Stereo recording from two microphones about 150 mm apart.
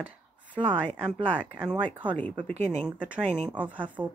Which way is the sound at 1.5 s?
10° right (ahead or behind).